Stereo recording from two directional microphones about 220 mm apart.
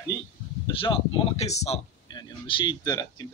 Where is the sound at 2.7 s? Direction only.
15° left (ahead or behind).